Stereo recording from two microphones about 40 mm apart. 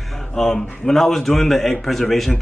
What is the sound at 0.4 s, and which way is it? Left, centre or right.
A man's voice, centre.